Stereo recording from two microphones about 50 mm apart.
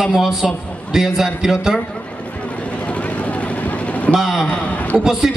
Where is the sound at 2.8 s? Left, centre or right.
Left.